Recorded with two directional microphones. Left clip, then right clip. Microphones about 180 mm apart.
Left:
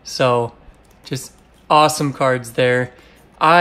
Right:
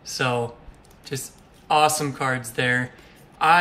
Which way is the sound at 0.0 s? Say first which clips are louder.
Left 8 dB; 25° left (ahead or behind).